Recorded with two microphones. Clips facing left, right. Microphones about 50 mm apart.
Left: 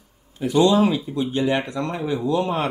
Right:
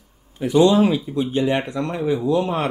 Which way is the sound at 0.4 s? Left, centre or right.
Right.